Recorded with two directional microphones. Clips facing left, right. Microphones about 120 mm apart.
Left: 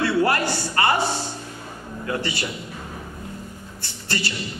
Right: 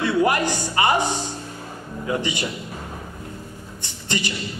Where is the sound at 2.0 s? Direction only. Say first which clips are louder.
Right 2 dB; 15° right (ahead or behind).